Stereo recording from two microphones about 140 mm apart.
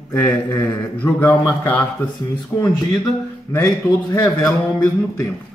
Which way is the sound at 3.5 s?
25° left (ahead or behind).